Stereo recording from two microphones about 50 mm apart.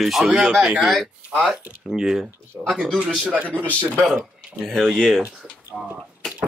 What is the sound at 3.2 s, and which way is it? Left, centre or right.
Speech, right.